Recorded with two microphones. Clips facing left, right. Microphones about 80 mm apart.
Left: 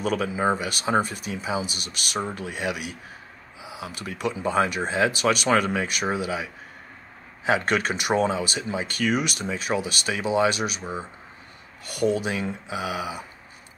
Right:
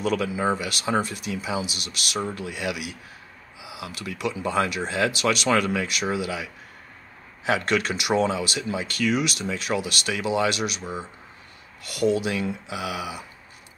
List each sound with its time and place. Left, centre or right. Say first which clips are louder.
0.0 s speech: even; left
10.8 s speech: even; centre
11.9 s speech: right 1 dB; left